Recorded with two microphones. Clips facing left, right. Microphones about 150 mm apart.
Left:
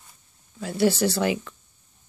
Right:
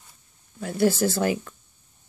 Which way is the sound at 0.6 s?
50° right (ahead or behind).